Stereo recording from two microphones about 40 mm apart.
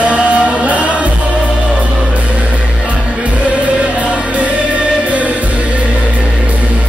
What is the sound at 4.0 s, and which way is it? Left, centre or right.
Music, right.